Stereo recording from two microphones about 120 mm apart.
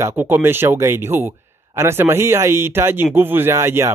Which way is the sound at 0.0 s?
15° right (ahead or behind).